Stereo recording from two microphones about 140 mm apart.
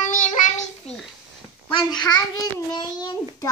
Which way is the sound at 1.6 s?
35° left (ahead or behind).